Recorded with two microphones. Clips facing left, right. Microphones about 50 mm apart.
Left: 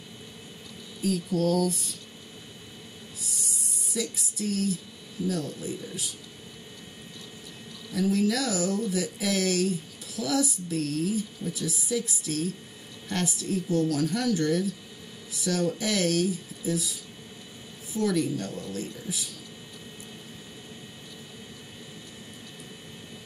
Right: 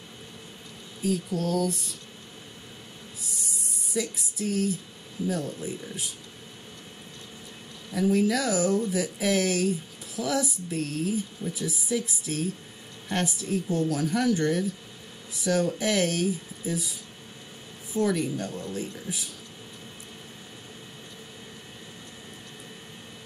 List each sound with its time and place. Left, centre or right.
1.0 s speech: centre
3.9 s music: centre
4.4 s speech: centre
7.9 s speech: centre
17.9 s speech: centre